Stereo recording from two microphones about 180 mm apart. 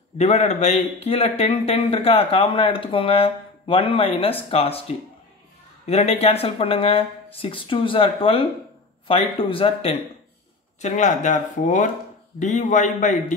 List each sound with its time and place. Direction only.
0.2 s speech: 40° left (ahead or behind)